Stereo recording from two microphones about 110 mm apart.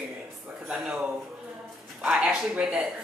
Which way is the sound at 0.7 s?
5° right (ahead or behind).